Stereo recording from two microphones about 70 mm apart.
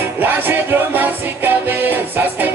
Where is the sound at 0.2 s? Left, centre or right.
Right.